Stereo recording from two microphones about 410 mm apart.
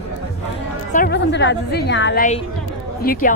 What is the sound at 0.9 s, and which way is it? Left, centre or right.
A woman's voice, left.